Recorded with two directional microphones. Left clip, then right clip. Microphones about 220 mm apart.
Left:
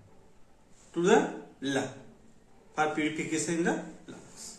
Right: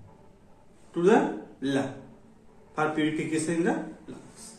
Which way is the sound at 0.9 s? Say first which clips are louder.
Right 2 dB; 15° left (ahead or behind).